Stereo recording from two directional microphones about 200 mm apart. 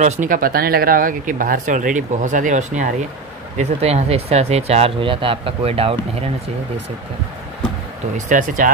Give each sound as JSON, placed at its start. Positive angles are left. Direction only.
{"t": 0.0, "sound": "speech", "side_deg": -40}
{"t": 8.3, "sound": "speech", "side_deg": -40}